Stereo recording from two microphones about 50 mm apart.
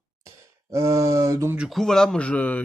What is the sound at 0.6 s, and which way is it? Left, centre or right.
Speech, right.